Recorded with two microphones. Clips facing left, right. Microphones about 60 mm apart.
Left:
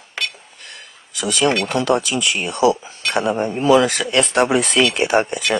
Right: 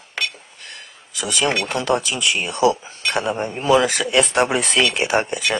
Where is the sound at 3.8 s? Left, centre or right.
Centre.